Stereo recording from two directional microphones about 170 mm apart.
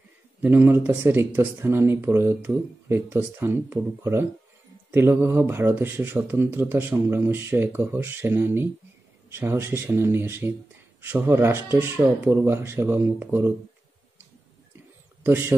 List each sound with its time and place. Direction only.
0.4 s speech: 10° right (ahead or behind)
15.2 s speech: 15° right (ahead or behind)